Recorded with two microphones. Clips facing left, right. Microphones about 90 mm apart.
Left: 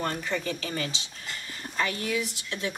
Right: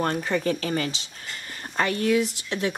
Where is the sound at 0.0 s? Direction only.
45° right (ahead or behind).